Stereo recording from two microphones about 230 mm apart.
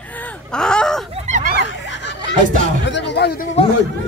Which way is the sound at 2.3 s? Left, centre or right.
Right.